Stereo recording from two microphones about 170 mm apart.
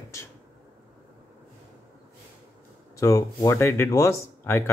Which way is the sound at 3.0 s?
20° left (ahead or behind).